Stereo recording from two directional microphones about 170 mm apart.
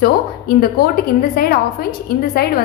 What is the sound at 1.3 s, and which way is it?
A woman's voice, 60° left (ahead or behind).